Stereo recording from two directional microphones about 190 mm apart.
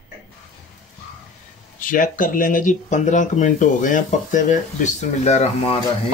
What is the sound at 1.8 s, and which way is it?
Speech, 45° left (ahead or behind).